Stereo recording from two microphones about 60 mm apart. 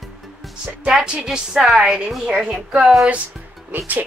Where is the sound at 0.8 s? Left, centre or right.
Centre.